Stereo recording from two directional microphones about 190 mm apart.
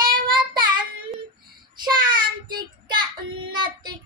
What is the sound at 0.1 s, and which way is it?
Child singing, 25° right (ahead or behind).